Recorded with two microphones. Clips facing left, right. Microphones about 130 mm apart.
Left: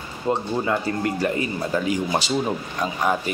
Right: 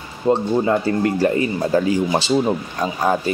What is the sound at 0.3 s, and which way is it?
Speech, 30° right (ahead or behind).